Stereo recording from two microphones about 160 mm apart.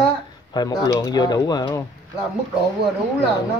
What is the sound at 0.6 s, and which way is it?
Speech, 25° left (ahead or behind).